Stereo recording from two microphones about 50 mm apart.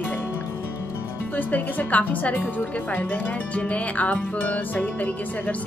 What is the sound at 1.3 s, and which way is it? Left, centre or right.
Speech, left.